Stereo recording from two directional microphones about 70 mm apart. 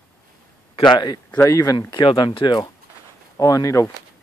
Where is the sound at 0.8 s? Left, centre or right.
Left.